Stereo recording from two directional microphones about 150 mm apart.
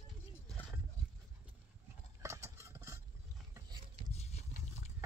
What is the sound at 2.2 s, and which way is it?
Clip-clop, 20° right (ahead or behind).